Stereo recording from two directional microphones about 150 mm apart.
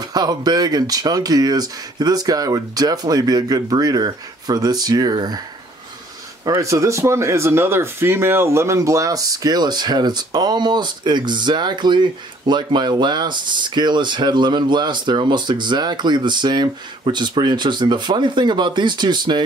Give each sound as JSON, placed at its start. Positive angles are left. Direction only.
{"t": 0.0, "sound": "speech", "side_deg": -25}
{"t": 6.4, "sound": "speech", "side_deg": -25}